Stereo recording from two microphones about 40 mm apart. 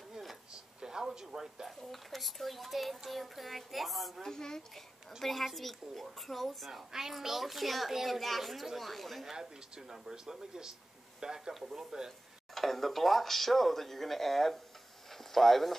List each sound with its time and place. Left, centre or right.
0.7 s a sound: centre
1.9 s a child's voice: centre
4.3 s speech: centre
5.2 s a child's voice: centre
6.9 s a child's voice: centre
9.2 s speech: centre
12.5 s a child's voice: centre